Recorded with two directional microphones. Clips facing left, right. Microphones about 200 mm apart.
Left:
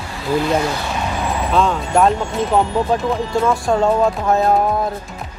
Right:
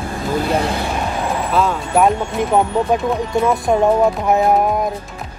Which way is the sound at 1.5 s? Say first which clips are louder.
Left 1 dB; 10° right (ahead or behind).